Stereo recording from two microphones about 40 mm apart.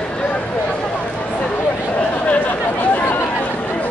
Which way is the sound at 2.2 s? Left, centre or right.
Left.